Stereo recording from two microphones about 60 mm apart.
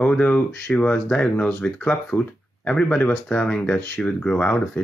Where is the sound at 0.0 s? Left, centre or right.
Centre.